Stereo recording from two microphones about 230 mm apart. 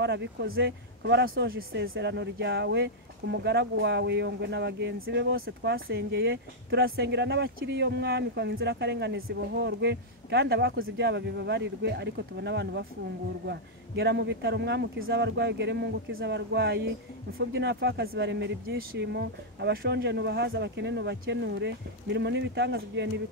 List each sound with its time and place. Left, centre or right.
0.0 s speech: right